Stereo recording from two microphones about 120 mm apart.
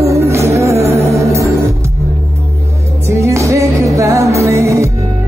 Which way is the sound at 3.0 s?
25° right (ahead or behind).